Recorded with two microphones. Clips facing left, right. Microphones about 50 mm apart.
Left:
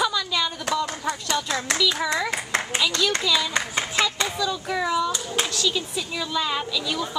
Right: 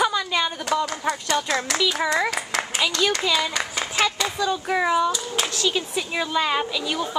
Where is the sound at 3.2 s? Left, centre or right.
Right.